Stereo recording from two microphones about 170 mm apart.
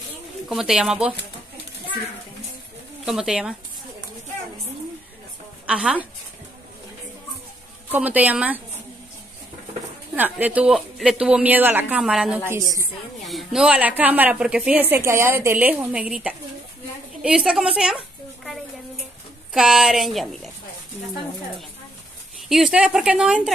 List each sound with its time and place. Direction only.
0.5 s speech: centre (ahead or behind)
3.1 s speech: 5° right (ahead or behind)
5.7 s speech: 5° right (ahead or behind)
7.9 s a woman's voice: 10° right (ahead or behind)
10.1 s speech: 10° right (ahead or behind)
12.4 s a woman's voice: 20° right (ahead or behind)
13.2 s a woman's voice: centre (ahead or behind)
17.2 s a sound: 5° right (ahead or behind)
19.5 s speech: 5° right (ahead or behind)
22.5 s speech: 5° right (ahead or behind)